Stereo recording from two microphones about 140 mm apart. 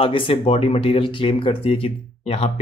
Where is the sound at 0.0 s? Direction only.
40° left (ahead or behind).